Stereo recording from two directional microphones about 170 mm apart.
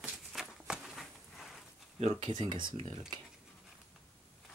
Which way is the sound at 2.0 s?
40° right (ahead or behind).